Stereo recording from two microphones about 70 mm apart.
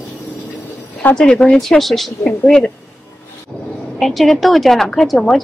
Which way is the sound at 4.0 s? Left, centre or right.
Centre.